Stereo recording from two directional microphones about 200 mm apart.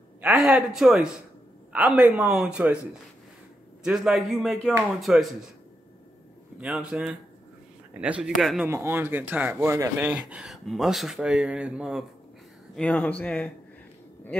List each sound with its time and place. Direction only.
0.2 s speech: 5° right (ahead or behind)
3.8 s speech: 5° right (ahead or behind)
6.6 s speech: 5° right (ahead or behind)
12.7 s speech: 5° left (ahead or behind)